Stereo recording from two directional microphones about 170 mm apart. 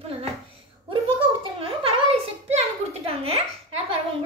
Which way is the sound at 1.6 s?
35° right (ahead or behind).